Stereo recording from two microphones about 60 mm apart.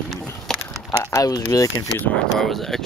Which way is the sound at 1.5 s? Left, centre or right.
Left.